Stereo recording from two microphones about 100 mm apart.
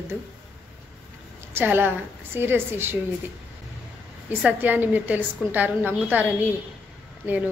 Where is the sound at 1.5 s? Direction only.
20° right (ahead or behind).